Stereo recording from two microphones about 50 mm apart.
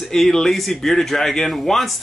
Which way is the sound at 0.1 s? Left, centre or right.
Centre.